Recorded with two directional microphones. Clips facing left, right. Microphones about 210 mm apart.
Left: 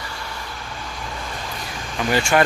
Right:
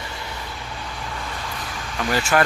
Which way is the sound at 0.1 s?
20° right (ahead or behind).